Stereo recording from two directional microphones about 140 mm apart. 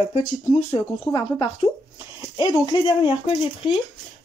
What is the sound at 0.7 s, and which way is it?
Speech, 30° left (ahead or behind).